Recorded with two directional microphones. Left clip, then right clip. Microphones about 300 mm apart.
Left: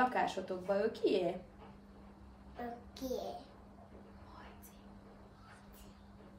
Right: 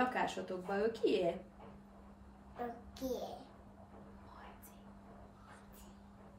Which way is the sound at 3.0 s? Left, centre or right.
Centre.